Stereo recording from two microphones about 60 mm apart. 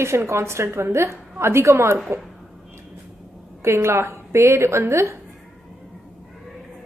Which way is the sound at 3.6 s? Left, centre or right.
Right.